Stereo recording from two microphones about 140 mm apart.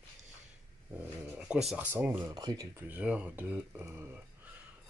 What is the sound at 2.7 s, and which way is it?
Speech, 10° right (ahead or behind).